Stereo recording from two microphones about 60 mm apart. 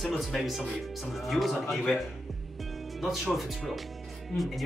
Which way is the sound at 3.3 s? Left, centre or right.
Centre.